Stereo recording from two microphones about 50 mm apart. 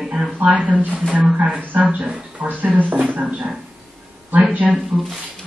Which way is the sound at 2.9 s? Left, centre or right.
Right.